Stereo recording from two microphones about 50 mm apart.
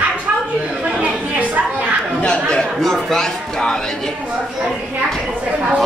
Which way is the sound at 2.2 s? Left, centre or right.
Centre.